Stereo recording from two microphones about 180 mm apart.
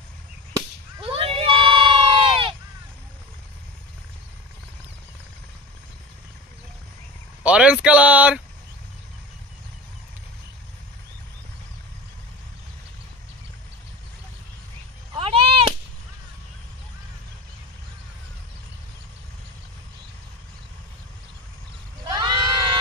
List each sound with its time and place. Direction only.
0.6 s whip: 20° right (ahead or behind)
1.1 s crowd: 30° right (ahead or behind)
7.4 s speech: 5° right (ahead or behind)
15.1 s cat: 30° right (ahead or behind)
22.0 s sheep: 25° right (ahead or behind)